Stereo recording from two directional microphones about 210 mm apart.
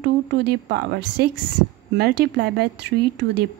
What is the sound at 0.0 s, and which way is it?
A woman's voice, 50° right (ahead or behind).